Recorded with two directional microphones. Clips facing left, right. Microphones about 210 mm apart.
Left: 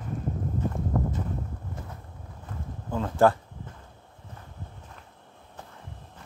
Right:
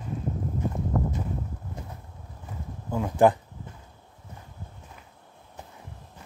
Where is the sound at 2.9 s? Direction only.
10° right (ahead or behind).